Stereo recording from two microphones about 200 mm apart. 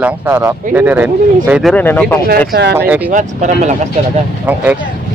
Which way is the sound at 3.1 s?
40° right (ahead or behind).